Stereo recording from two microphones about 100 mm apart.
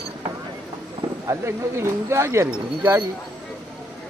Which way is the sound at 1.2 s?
30° right (ahead or behind).